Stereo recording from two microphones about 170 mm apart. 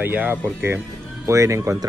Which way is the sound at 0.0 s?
10° right (ahead or behind).